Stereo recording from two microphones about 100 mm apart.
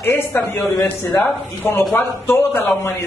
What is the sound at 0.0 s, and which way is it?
A man's voice, 25° left (ahead or behind).